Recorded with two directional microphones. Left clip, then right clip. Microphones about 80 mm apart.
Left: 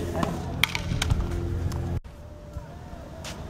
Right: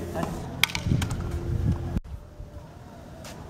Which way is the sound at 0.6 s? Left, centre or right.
Right.